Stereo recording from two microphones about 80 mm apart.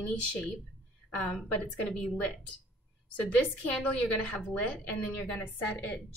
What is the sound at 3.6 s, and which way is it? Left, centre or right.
A woman's voice, centre.